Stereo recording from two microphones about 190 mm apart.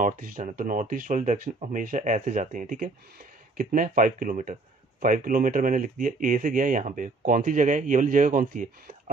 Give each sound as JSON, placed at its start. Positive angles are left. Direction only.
{"t": 0.0, "sound": "speech", "side_deg": -45}